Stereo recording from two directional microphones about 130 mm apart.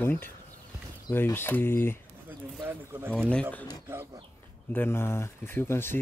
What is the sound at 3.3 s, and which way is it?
Speech, 10° left (ahead or behind).